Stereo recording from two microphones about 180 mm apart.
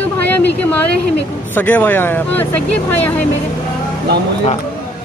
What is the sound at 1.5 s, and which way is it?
Speech, 10° left (ahead or behind).